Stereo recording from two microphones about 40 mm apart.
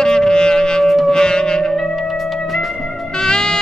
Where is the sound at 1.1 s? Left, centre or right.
Centre.